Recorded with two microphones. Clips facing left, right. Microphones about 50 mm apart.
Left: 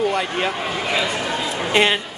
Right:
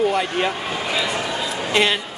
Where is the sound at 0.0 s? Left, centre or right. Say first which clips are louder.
Right 1 dB; centre.